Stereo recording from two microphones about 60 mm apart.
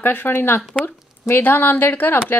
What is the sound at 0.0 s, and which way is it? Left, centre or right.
A woman's voice, left.